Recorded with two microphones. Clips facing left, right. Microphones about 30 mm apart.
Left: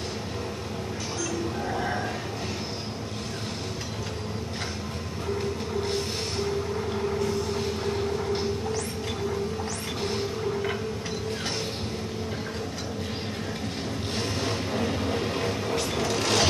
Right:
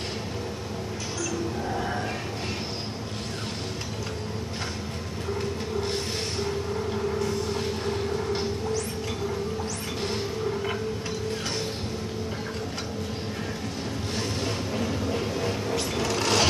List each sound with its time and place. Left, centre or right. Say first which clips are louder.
14.4 s music: left 1 dB; left
15.7 s a sound: even; left
16.2 s filing: right 1 dB; right